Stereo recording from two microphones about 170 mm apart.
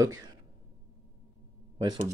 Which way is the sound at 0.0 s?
20° right (ahead or behind).